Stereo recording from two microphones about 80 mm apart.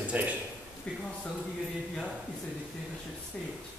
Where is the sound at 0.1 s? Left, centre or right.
Centre.